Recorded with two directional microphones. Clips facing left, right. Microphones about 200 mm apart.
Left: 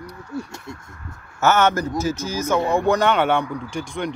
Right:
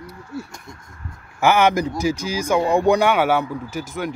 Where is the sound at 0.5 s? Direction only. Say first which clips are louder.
Left 5 dB; 25° left (ahead or behind).